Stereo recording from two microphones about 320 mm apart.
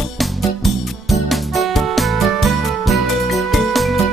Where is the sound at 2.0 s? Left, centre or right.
Centre.